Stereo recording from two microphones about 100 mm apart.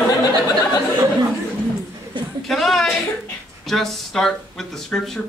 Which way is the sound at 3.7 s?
5° left (ahead or behind).